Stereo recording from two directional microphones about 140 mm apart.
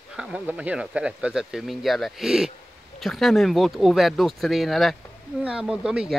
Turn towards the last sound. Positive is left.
turn(degrees=-5)  # may be behind; listen again after turning